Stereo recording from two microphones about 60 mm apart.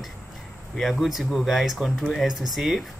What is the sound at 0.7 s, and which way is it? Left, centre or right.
Speech, centre.